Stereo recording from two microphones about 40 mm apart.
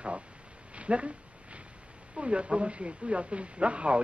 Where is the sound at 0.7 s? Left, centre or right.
Right.